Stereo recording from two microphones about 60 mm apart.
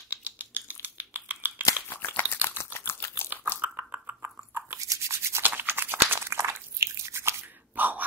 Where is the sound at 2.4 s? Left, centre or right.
Left.